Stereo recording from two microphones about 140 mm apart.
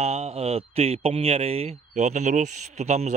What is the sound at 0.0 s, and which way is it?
Speech, 50° right (ahead or behind).